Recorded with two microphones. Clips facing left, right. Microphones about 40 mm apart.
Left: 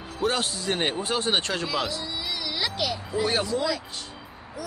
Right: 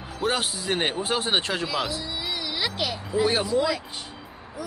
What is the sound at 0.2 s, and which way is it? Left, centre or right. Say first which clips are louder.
Speech: even; centre.